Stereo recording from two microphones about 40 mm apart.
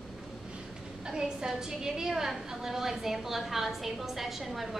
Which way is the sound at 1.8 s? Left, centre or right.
Centre.